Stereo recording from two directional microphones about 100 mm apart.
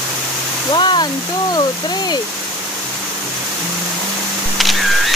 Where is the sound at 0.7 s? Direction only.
50° left (ahead or behind).